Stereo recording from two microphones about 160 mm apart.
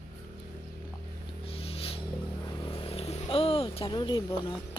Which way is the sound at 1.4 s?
35° left (ahead or behind).